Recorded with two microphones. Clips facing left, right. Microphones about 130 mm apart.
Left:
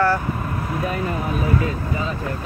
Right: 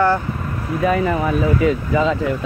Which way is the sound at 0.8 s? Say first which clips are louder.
Right 10 dB; 90° right.